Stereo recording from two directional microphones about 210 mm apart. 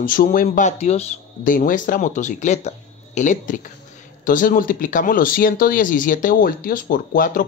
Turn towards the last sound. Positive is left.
turn(degrees=40)  # may be behind; listen again after turning